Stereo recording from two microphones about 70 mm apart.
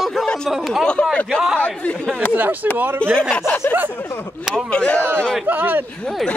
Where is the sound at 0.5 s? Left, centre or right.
Centre.